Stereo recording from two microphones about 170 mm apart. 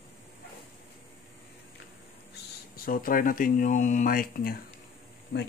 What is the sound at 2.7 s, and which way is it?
Speech, 60° left (ahead or behind).